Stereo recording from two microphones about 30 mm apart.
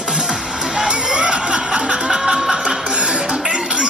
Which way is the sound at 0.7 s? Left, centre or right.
Right.